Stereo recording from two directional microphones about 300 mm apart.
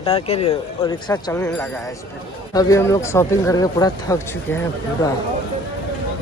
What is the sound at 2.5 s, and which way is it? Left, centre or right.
Speech, centre.